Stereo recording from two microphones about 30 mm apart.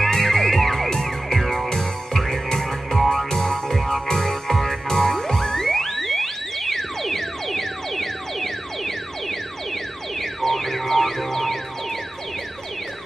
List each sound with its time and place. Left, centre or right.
0.0 s music: centre
10.4 s music: centre